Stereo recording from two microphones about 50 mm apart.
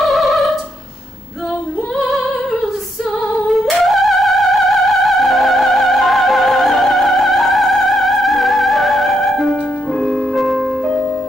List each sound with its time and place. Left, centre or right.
0.0 s opera: centre
2.0 s music: centre
3.4 s music: centre